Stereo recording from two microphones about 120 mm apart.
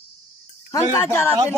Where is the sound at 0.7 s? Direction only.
20° left (ahead or behind).